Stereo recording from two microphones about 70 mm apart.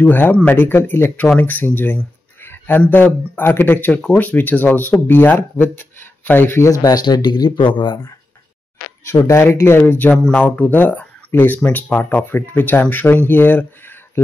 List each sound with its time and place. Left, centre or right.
0.0 s speech: left
2.4 s a sound: left
2.9 s speech: left
6.8 s speech: left
9.0 s speech: left
10.2 s speech: centre